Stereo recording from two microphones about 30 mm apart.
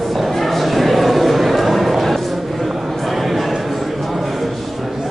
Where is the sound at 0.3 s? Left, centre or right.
Centre.